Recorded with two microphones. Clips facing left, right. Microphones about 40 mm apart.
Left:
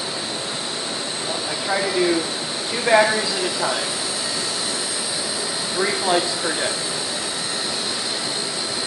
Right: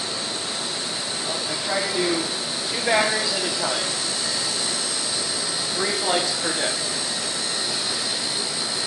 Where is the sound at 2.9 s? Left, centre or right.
Centre.